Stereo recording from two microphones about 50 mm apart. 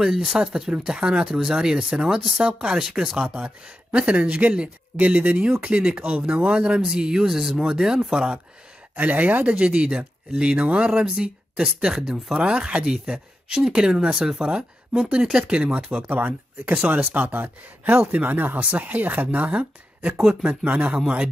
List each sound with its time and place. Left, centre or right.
0.0 s speech: centre
3.2 s speech: right
8.9 s speech: right
15.9 s speech: right
19.5 s speech: right